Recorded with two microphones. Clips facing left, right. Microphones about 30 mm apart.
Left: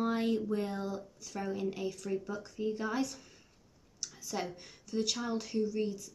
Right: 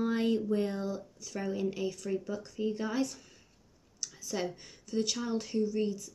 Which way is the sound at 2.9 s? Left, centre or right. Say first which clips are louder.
Right 2 dB; centre.